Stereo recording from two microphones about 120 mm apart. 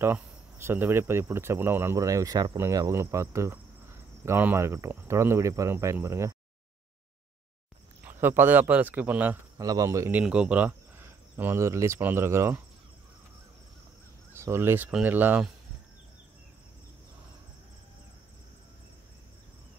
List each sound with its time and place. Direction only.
0.0 s speech: 20° right (ahead or behind)
8.0 s speech: 15° right (ahead or behind)
9.6 s speech: 30° right (ahead or behind)
10.2 s speech: 10° right (ahead or behind)
14.3 s speech: 20° right (ahead or behind)